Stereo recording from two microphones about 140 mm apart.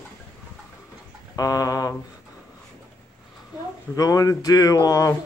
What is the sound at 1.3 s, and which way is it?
Speech, 25° left (ahead or behind).